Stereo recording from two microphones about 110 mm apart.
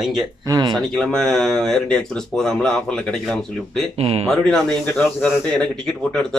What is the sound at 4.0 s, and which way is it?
Speech, 65° right (ahead or behind).